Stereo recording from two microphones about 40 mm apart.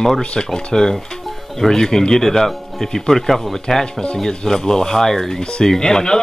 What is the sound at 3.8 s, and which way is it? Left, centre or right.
Speech, left.